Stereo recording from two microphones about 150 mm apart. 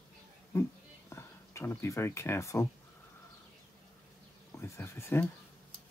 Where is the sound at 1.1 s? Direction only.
15° left (ahead or behind).